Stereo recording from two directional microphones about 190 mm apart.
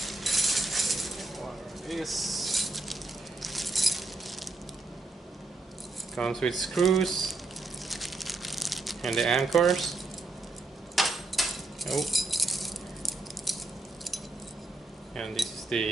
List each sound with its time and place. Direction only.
0.0 s coin: centre (ahead or behind)
6.1 s speech: 5° left (ahead or behind)
7.9 s crumpling: centre (ahead or behind)
11.0 s keys jangling: centre (ahead or behind)
15.1 s speech: centre (ahead or behind)